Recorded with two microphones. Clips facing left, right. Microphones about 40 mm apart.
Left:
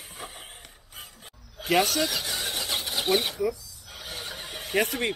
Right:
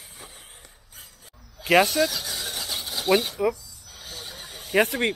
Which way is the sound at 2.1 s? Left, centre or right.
Centre.